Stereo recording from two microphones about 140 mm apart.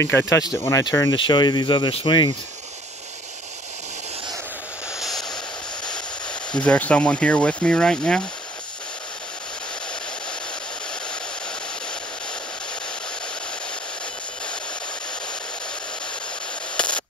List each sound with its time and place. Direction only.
0.0 s speech: 20° left (ahead or behind)
6.5 s speech: 10° left (ahead or behind)
16.7 s static: 5° left (ahead or behind)